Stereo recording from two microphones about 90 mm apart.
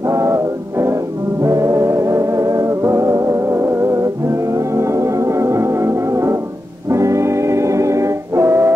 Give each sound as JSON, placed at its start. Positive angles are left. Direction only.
{"t": 0.0, "sound": "music", "side_deg": -35}